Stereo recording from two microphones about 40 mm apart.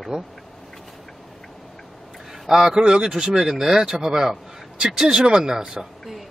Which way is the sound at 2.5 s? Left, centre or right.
Centre.